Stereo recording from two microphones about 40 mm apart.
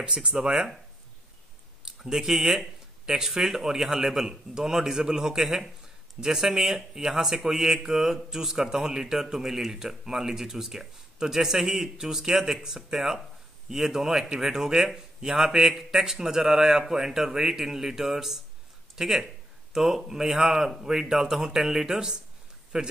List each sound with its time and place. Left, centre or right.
0.0 s speech: right
1.9 s a man's voice: centre